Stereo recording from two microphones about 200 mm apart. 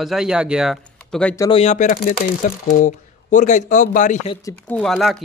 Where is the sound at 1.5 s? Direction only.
35° left (ahead or behind).